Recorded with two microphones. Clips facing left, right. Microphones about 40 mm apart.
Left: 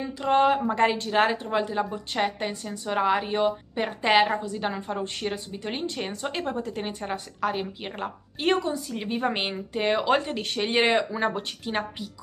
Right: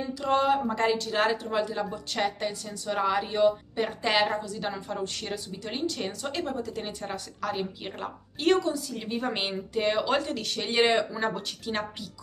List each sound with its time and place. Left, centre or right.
0.2 s a woman's voice: left